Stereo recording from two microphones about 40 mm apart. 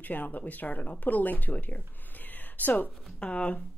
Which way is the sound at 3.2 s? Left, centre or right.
Left.